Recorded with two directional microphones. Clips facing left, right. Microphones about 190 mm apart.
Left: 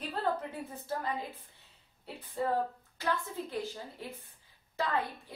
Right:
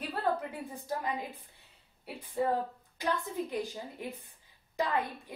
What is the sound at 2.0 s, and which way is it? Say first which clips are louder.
A woman's voice: right 2 dB; 15° right (ahead or behind).